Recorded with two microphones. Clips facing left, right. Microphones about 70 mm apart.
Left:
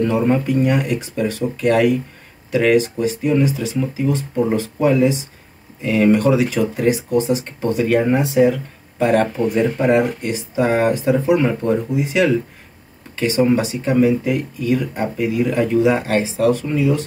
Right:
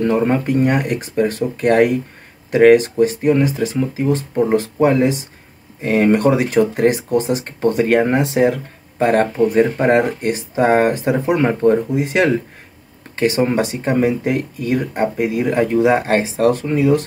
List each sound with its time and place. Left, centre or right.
0.0 s speech: right
8.9 s speech: right